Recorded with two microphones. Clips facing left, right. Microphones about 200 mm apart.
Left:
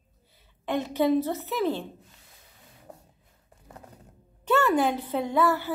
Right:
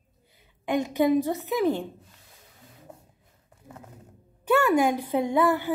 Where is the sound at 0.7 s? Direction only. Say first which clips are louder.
Right 1 dB; 15° right (ahead or behind).